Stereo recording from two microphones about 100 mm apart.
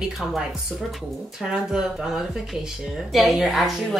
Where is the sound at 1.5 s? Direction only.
5° right (ahead or behind).